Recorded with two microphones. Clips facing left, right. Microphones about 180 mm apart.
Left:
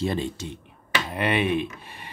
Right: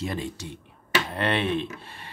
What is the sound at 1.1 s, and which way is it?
Speech, 10° left (ahead or behind).